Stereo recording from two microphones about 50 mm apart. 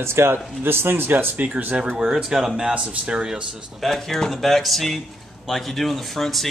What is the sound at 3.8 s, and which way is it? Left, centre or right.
Speech, centre.